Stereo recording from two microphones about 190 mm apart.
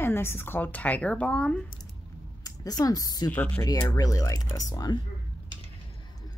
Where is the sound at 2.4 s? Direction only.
20° left (ahead or behind).